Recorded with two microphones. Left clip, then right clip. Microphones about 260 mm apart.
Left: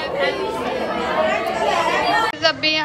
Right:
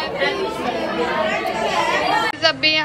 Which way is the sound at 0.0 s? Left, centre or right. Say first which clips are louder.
Even; centre.